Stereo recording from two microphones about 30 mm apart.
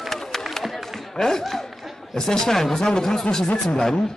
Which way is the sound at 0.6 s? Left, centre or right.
Centre.